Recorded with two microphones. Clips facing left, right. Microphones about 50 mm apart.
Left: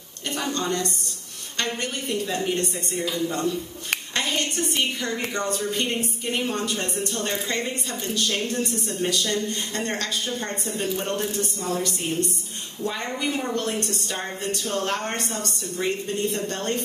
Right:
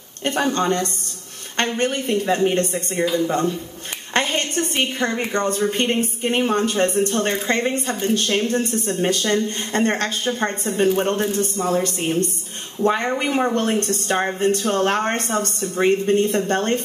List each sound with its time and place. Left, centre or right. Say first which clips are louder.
0.2 s a woman's voice: right 7 dB; right